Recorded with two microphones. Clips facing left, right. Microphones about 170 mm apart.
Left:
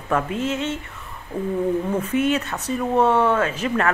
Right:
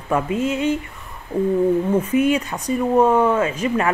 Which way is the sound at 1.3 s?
30° right (ahead or behind).